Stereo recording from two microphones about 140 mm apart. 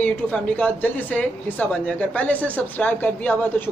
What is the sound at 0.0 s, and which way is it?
Speech, 10° left (ahead or behind).